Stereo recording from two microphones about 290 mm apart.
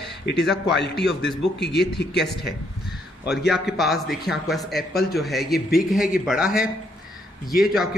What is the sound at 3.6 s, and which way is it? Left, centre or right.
A man's voice, centre.